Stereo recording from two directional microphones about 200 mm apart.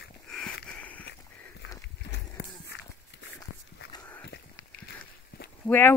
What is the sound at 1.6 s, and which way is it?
Run, 55° left (ahead or behind).